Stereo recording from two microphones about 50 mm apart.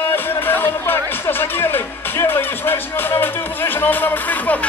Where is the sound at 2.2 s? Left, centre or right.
Left.